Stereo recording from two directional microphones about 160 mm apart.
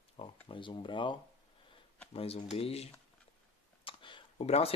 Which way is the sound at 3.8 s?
30° left (ahead or behind).